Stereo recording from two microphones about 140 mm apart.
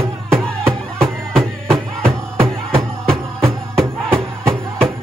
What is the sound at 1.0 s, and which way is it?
Music, 5° left (ahead or behind).